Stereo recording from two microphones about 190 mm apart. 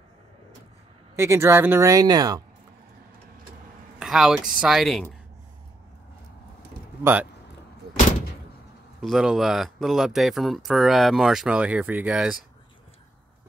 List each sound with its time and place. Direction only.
1.1 s speech: 15° right (ahead or behind)
4.0 s speech: 5° right (ahead or behind)
7.0 s speech: 10° right (ahead or behind)
9.0 s speech: 5° right (ahead or behind)